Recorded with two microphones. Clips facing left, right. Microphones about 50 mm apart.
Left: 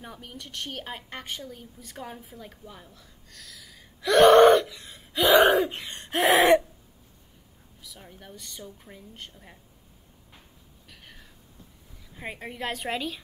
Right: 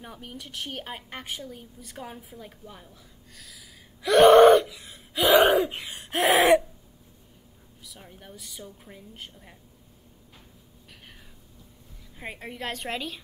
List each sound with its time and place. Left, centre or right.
0.0 s a woman's voice: centre
7.8 s a woman's voice: centre
12.2 s a woman's voice: centre